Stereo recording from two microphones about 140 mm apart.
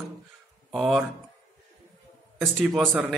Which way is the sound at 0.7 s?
Centre (ahead or behind).